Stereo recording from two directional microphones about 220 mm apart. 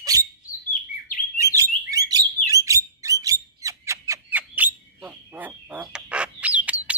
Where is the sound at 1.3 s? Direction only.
15° right (ahead or behind).